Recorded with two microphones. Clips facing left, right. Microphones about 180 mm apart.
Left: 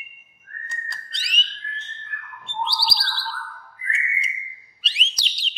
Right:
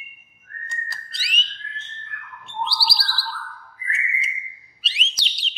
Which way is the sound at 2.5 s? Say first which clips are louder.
Even; centre (ahead or behind).